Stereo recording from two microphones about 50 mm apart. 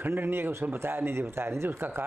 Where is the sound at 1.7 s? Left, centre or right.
Right.